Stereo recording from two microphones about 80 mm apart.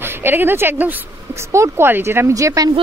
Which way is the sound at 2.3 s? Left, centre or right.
Right.